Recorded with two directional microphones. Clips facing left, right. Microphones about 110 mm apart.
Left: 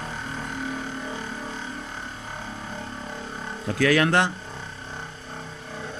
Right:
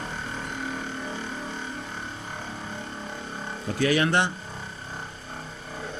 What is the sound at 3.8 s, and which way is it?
Speech, 90° left.